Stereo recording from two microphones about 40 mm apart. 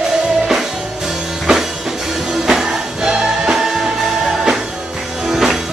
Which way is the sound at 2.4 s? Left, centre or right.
Centre.